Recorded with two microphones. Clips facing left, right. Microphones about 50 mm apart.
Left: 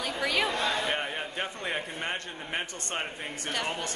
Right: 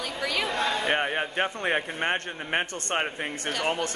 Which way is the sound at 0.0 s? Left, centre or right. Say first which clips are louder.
Left 1 dB; centre.